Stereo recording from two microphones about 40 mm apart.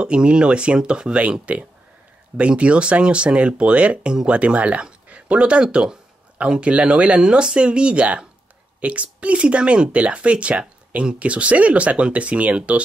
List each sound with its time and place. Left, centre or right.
0.0 s speech: right